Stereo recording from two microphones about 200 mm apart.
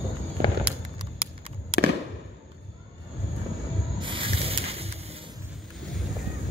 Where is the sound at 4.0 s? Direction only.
25° right (ahead or behind).